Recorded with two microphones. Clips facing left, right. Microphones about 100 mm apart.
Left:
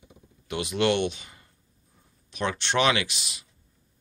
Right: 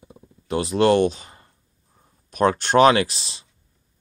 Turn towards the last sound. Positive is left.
turn(degrees=-30)  # may be behind; listen again after turning